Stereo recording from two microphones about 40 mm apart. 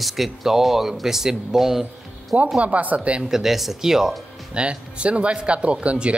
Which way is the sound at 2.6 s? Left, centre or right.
Right.